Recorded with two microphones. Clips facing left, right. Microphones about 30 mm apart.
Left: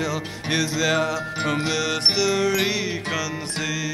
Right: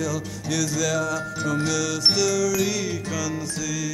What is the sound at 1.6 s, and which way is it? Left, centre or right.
Music, left.